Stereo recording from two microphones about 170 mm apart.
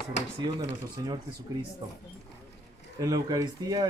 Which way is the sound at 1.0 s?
20° right (ahead or behind).